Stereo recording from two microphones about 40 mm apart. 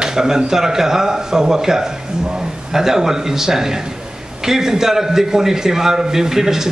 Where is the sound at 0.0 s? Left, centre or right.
Centre.